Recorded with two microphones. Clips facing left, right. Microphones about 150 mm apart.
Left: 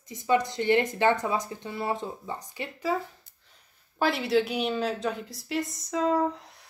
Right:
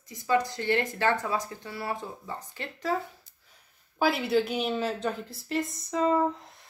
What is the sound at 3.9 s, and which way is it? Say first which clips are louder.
A woman's voice: even; centre (ahead or behind).